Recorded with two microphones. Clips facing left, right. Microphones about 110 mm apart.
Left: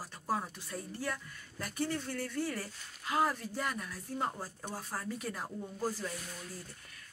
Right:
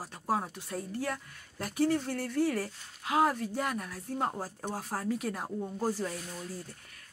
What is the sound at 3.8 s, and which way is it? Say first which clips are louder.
Speech: right 3 dB; 55° right (ahead or behind).